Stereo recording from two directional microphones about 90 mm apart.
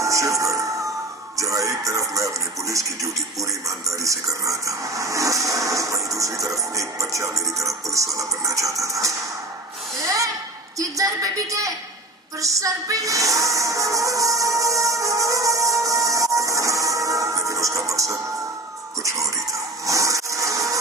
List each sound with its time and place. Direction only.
0.0 s a sound: 35° right (ahead or behind)
1.4 s music: 35° right (ahead or behind)
4.0 s speech: 35° right (ahead or behind)
11.0 s music: 40° right (ahead or behind)
19.9 s wood: 35° right (ahead or behind)